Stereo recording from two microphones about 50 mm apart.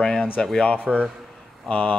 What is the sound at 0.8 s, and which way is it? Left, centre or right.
Speech, right.